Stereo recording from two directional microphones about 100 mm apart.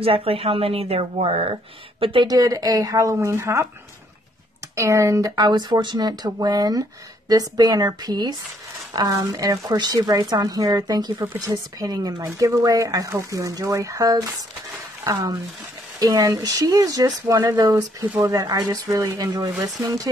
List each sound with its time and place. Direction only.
0.0 s speech: 70° right (ahead or behind)
2.0 s speech: 60° right (ahead or behind)
2.2 s speech: 35° right (ahead or behind)
4.7 s speech: 30° right (ahead or behind)